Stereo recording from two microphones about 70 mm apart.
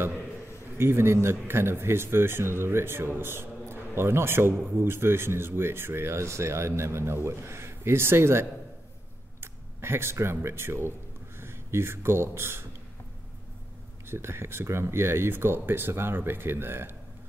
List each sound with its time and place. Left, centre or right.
0.7 s speech: right
14.0 s speech: right